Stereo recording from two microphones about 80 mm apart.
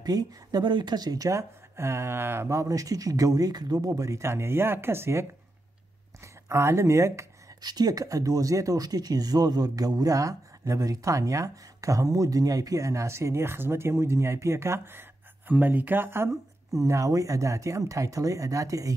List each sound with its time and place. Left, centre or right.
0.0 s speech: right
1.8 s speech: right
2.6 s speech: right
6.2 s speech: right
7.6 s speech: right
16.7 s speech: right